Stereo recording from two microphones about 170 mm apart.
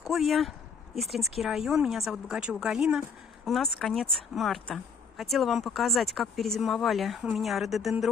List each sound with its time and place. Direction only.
0.0 s speech: centre (ahead or behind)